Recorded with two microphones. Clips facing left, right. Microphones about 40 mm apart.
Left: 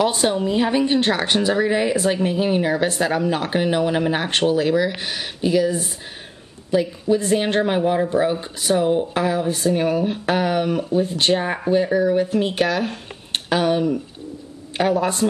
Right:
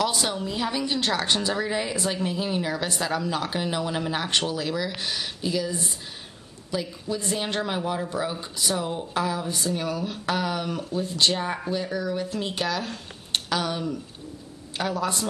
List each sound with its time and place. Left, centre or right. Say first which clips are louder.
0.0 s a man's voice: left 7 dB; left